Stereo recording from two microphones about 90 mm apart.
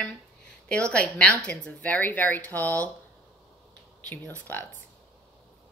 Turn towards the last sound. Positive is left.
turn(degrees=20)  # may be behind; listen again after turning